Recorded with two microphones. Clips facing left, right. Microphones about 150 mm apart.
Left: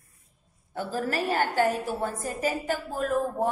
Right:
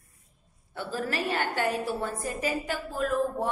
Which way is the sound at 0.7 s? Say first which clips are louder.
Left 3 dB; 45° left (ahead or behind).